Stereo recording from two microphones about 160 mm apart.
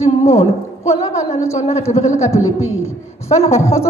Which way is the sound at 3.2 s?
40° left (ahead or behind).